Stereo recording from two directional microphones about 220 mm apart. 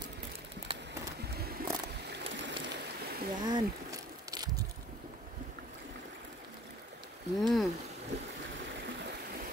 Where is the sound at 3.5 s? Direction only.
15° right (ahead or behind).